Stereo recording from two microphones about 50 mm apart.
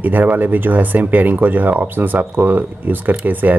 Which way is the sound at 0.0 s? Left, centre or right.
Right.